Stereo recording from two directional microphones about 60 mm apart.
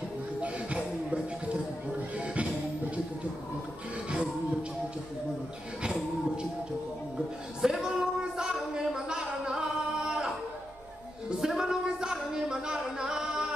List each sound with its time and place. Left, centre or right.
0.4 s music: right
5.8 s music: centre
7.6 s a sound: centre